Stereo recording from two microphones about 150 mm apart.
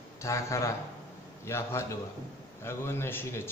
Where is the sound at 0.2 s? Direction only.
20° left (ahead or behind).